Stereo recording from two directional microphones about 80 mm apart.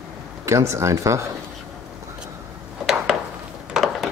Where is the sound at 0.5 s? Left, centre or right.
Right.